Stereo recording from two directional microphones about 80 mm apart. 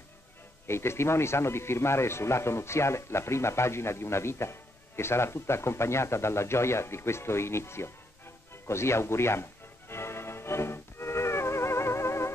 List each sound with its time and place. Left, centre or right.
0.7 s speech: left
8.6 s music: left